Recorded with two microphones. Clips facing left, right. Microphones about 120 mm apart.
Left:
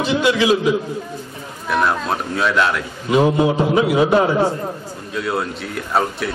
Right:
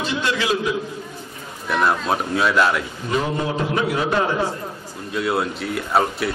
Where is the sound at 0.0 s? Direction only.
10° left (ahead or behind).